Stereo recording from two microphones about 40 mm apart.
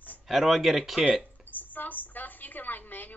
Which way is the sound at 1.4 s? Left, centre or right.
Left.